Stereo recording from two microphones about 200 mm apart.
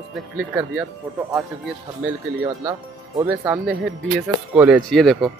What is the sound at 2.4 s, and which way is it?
Speech, 15° right (ahead or behind).